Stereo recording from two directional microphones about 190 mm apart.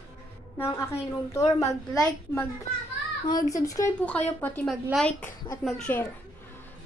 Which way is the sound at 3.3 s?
20° left (ahead or behind).